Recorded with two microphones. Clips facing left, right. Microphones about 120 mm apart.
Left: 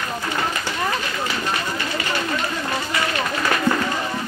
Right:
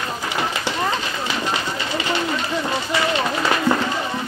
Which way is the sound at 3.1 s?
20° right (ahead or behind).